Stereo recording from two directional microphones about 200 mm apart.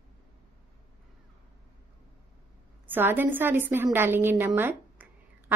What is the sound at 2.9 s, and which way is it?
A woman's voice, 10° right (ahead or behind).